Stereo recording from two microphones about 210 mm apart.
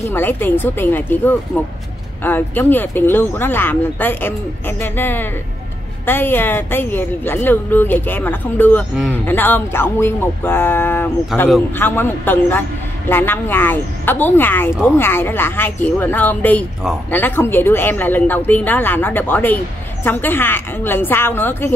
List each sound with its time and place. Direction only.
0.0 s speech: 10° left (ahead or behind)